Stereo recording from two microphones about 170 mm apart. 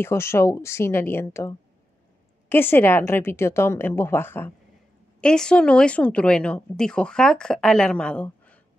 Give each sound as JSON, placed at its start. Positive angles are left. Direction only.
{"t": 0.0, "sound": "a woman's voice", "side_deg": 15}